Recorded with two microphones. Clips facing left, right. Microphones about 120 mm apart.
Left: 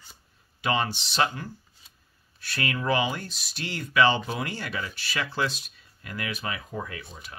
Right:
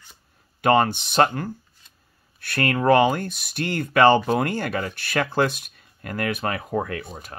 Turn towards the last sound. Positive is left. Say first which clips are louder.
# right 8 dB
turn(degrees=-55)  # may be behind; listen again after turning